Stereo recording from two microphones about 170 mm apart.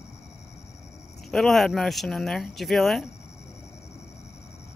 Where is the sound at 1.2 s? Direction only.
Centre (ahead or behind).